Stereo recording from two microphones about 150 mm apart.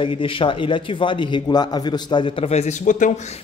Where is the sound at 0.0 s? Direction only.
35° left (ahead or behind); by 3.2 s 55° left (ahead or behind).